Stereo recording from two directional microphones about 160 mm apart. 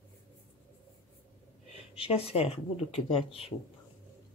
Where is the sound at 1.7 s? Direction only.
35° left (ahead or behind).